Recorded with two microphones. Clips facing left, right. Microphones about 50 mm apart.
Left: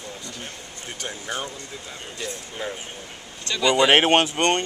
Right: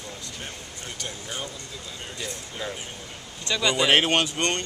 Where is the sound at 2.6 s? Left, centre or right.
Left.